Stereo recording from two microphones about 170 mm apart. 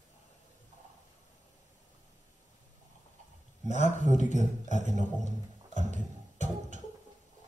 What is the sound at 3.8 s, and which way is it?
Speech, 45° right (ahead or behind).